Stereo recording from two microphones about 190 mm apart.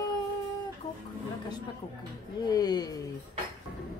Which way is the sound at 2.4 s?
20° left (ahead or behind).